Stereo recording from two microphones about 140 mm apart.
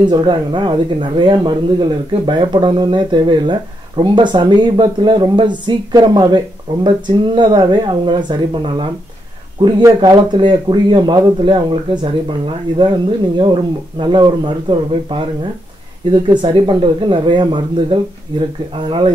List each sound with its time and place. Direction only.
0.0 s speech: 30° right (ahead or behind)